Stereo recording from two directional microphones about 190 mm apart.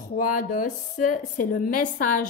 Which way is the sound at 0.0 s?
45° left (ahead or behind).